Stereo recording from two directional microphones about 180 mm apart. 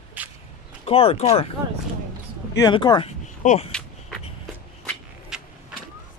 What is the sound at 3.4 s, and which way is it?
Speech, 45° left (ahead or behind).